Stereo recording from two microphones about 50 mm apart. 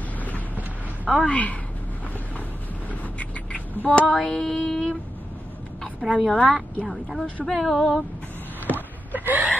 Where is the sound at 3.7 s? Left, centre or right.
Left.